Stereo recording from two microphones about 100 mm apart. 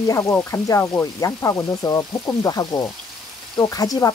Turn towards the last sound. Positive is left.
turn(degrees=35)  # may be behind; listen again after turning